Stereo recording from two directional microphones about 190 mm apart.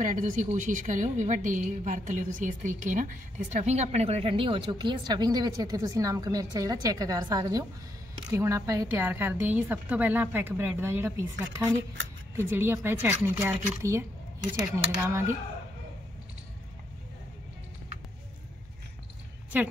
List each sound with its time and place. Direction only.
0.0 s a woman's voice: 40° right (ahead or behind); by 15.3 s 15° right (ahead or behind)
19.5 s a woman's voice: 10° right (ahead or behind)